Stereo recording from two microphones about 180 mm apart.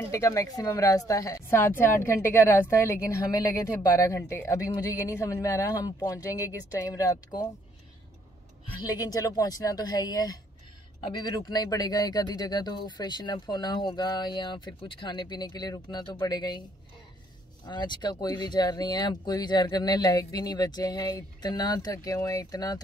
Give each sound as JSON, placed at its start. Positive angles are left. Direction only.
{"t": 0.1, "sound": "speech", "side_deg": 15}
{"t": 8.8, "sound": "speech", "side_deg": 20}
{"t": 17.6, "sound": "speech", "side_deg": 25}